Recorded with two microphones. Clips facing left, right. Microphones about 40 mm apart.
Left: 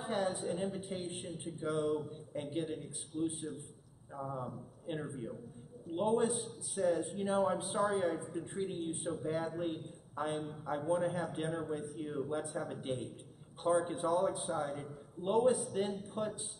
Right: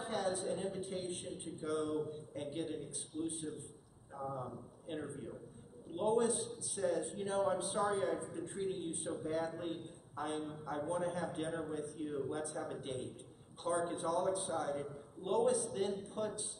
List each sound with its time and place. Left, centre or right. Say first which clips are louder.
0.0 s a sound: left 2 dB; centre
0.4 s a woman's voice: left 2 dB; centre
5.9 s a man's voice: left 1 dB; centre
11.8 s a man's voice: left 1 dB; centre
16.2 s a man's voice: left 3 dB; left